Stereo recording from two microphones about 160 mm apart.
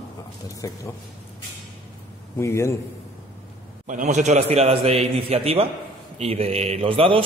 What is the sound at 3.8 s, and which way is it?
A man's voice, 50° right (ahead or behind).